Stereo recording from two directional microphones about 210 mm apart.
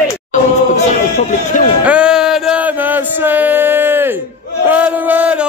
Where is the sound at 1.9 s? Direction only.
5° right (ahead or behind).